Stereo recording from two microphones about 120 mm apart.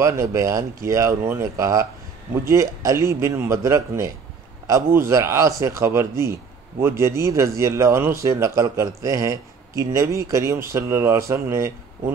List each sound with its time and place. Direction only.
0.0 s speech: 25° right (ahead or behind)